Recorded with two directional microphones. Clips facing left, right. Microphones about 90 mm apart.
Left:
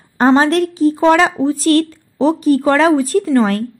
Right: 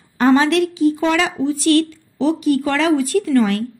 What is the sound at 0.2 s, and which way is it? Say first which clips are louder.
A woman's voice: left 2 dB; 40° left (ahead or behind).